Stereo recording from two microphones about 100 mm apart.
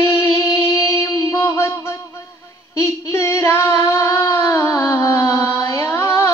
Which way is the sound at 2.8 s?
30° left (ahead or behind).